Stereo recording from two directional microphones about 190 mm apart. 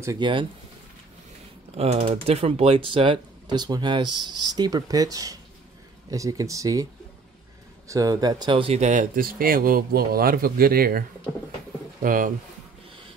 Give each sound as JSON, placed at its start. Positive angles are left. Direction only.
{"t": 0.0, "sound": "speech", "side_deg": -20}
{"t": 1.8, "sound": "speech", "side_deg": -30}
{"t": 7.9, "sound": "speech", "side_deg": -20}